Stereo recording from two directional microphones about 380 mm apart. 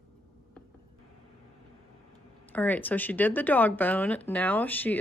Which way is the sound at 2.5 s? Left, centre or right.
Centre.